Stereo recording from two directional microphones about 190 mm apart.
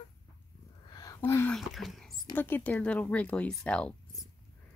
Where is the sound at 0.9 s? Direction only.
20° left (ahead or behind).